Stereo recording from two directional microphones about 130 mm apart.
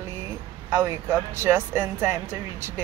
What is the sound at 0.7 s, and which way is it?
Speech, 20° right (ahead or behind).